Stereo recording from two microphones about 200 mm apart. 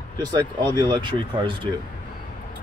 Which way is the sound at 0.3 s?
20° right (ahead or behind).